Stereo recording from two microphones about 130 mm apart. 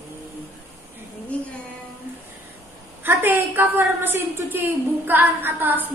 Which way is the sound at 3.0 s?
15° right (ahead or behind).